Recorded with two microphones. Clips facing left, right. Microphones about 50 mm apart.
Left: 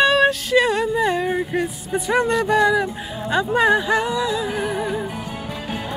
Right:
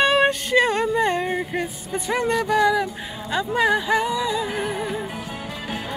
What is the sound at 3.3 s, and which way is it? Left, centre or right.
Speech, centre.